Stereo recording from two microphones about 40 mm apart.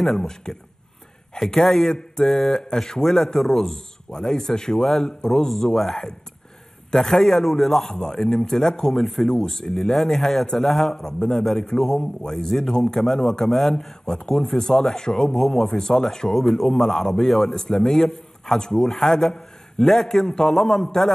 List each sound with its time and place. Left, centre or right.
0.0 s a man's voice: centre